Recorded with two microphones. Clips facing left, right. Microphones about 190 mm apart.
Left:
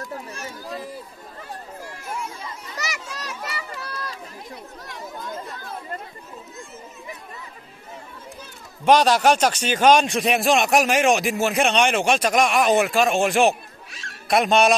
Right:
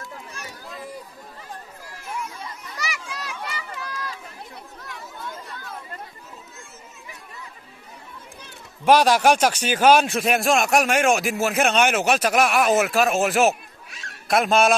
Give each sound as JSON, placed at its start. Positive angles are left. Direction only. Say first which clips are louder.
{"t": 0.0, "sound": "run", "louder": "left 5 dB", "side_deg": 40}
{"t": 2.8, "sound": "a sound", "louder": "even", "side_deg": 40}
{"t": 8.8, "sound": "speech", "louder": "even", "side_deg": -10}